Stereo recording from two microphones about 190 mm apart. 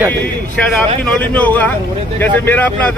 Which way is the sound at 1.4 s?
10° left (ahead or behind).